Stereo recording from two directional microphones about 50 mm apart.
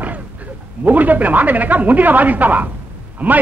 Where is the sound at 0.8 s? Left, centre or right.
Right.